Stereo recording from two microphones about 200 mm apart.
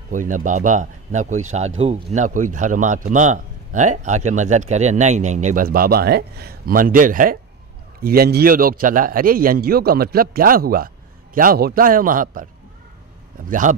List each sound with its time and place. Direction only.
0.1 s a man's voice: 40° right (ahead or behind)
13.5 s speech: 40° right (ahead or behind)